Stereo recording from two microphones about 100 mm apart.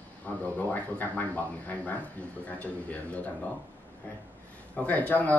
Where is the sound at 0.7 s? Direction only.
15° left (ahead or behind).